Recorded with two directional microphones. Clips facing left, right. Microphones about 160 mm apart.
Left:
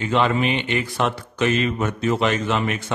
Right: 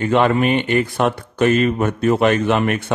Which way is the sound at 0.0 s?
55° right (ahead or behind).